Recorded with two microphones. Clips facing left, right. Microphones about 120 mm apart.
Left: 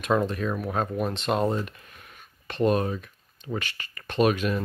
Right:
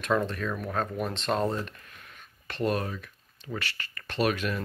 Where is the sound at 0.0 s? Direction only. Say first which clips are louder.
Left 3 dB; 15° left (ahead or behind).